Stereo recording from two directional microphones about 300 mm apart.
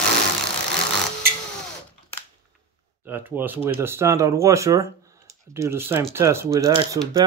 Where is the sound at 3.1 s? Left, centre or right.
Centre.